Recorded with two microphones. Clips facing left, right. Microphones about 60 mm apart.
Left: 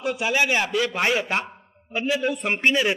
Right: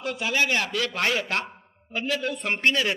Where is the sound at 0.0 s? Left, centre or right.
Centre.